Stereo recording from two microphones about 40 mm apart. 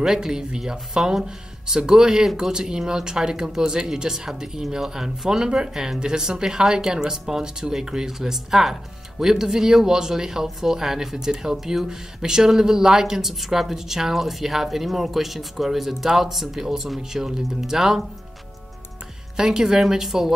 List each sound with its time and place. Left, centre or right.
0.0 s speech: centre
19.3 s speech: centre